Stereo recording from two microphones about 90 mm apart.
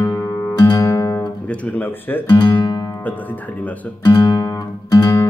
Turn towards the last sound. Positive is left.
turn(degrees=40)  # may be behind; listen again after turning